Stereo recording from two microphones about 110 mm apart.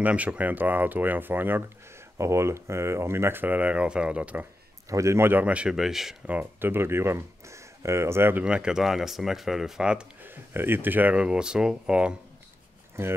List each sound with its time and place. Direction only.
0.0 s speech: 10° right (ahead or behind)
4.8 s speech: 30° right (ahead or behind); by 6.3 s 5° right (ahead or behind)
6.3 s speech: 20° right (ahead or behind)
8.5 s speech: 10° right (ahead or behind)
10.3 s speech: 20° right (ahead or behind)
13.0 s speech: 20° right (ahead or behind)